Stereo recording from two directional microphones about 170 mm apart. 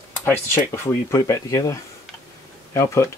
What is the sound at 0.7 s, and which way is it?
Speech, 15° left (ahead or behind).